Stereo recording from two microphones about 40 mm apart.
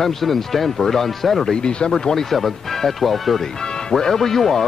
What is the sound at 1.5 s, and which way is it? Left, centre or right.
Speech, left.